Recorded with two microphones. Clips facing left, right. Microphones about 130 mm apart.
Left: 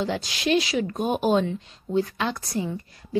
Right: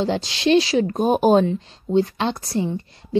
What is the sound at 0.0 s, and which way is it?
A woman's voice, 30° right (ahead or behind).